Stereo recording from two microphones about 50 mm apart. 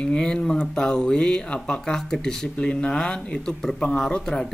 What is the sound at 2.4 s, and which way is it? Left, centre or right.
Speech, left.